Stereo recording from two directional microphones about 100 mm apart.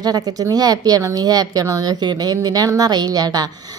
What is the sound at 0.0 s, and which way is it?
A woman's voice, 40° right (ahead or behind).